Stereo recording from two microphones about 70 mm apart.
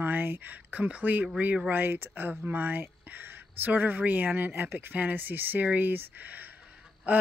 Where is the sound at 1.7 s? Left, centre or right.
Right.